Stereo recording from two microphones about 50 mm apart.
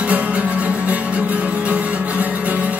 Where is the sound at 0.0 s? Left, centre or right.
Right.